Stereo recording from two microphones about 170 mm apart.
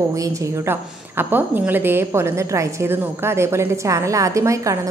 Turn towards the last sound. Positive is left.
turn(degrees=-20)  # may be behind; listen again after turning